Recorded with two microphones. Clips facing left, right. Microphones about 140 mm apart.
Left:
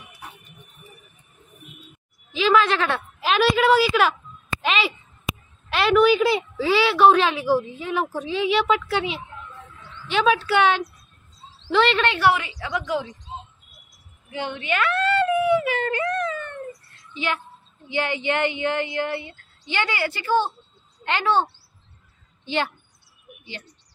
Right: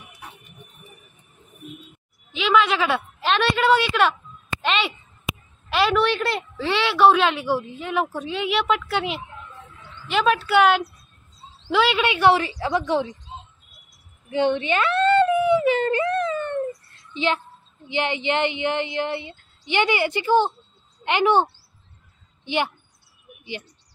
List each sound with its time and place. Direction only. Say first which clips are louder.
2.3 s a woman's voice: left 1 dB; centre (ahead or behind)
12.3 s a woman's voice: right 3 dB; 35° right (ahead or behind)
14.3 s whimper: right 6 dB; 30° right (ahead or behind)
17.1 s a child's voice: right 4 dB; 25° right (ahead or behind)